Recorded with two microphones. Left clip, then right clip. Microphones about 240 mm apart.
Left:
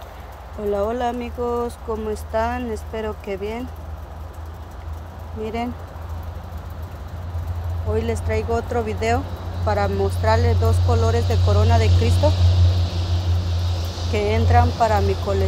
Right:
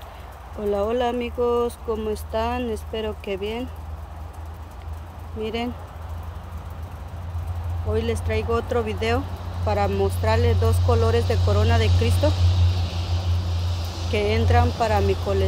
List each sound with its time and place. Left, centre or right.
0.7 s speech: centre
7.9 s speech: centre
14.1 s speech: centre